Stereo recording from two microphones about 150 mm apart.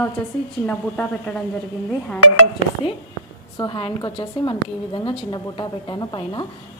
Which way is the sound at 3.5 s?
35° left (ahead or behind).